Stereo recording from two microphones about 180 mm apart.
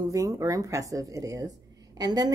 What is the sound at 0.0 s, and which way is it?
Speech, 20° right (ahead or behind).